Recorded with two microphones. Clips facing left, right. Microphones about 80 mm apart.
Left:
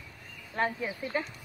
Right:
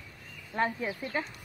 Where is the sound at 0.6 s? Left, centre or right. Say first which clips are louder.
Even; centre.